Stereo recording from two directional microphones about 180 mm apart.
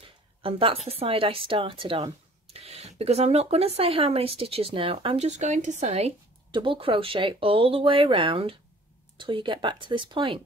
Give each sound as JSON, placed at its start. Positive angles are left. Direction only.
{"t": 0.4, "sound": "a woman's voice", "side_deg": -30}